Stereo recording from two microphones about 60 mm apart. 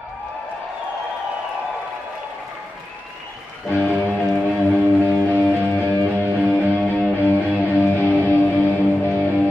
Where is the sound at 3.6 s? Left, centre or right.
Left.